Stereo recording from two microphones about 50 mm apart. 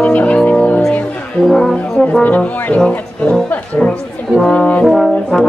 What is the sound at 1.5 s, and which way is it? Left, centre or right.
Brass instrument, centre.